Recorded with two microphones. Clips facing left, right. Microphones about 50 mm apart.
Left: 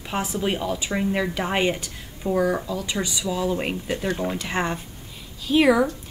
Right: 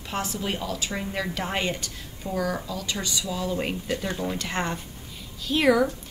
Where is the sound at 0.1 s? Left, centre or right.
Centre.